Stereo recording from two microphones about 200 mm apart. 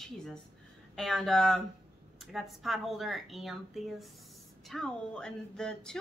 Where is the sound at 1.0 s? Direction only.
Centre (ahead or behind).